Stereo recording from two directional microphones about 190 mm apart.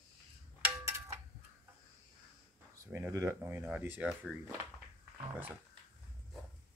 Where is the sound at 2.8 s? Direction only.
15° right (ahead or behind).